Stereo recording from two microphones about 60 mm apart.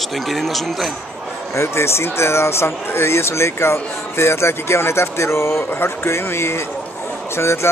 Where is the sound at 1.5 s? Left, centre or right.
Left.